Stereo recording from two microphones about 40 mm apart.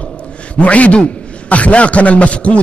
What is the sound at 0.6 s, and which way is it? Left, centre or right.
A man's voice, left.